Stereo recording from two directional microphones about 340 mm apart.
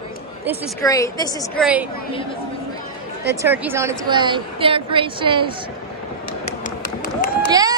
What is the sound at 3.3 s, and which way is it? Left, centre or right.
A woman's voice, centre.